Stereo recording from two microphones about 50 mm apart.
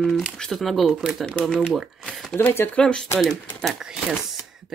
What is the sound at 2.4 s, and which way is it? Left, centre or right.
Speech, left.